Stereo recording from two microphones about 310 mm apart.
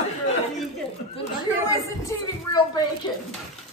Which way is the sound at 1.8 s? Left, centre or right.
Centre.